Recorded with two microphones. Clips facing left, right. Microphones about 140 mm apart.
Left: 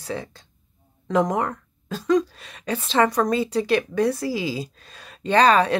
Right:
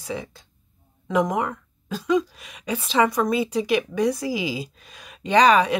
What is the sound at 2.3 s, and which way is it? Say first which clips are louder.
Speech: left 1 dB; 10° right (ahead or behind).